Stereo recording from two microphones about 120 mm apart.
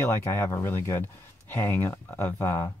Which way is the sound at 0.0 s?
20° left (ahead or behind).